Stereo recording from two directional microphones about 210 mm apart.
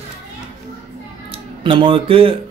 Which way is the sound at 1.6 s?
25° right (ahead or behind).